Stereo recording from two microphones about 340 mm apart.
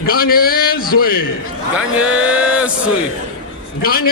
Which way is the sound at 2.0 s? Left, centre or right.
Centre.